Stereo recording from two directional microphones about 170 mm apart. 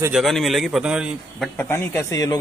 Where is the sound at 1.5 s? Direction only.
10° left (ahead or behind).